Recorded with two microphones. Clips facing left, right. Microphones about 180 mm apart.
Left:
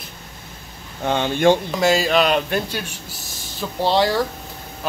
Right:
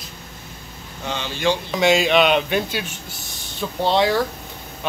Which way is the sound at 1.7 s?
Centre (ahead or behind).